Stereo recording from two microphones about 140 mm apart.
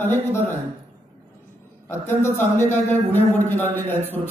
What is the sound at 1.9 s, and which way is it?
A man's voice, 20° left (ahead or behind).